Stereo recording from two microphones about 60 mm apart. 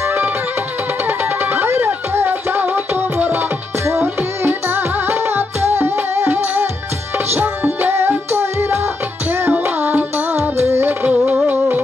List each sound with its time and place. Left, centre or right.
1.0 s music: right
11.1 s music: right